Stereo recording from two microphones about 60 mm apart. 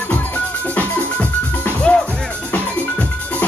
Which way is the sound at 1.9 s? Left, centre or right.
Centre.